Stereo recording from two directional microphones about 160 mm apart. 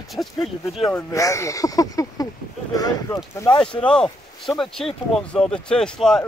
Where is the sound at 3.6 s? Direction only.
5° left (ahead or behind).